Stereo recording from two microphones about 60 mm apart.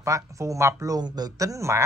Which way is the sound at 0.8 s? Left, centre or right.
Right.